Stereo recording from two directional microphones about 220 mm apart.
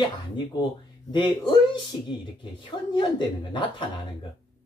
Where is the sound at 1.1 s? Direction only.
20° left (ahead or behind).